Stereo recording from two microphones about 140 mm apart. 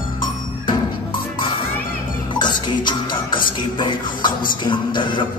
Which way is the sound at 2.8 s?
35° left (ahead or behind).